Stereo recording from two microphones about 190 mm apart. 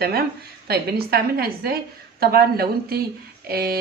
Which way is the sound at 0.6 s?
55° right (ahead or behind).